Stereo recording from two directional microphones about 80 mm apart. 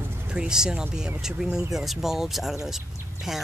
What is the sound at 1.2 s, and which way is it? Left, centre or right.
Speech, centre.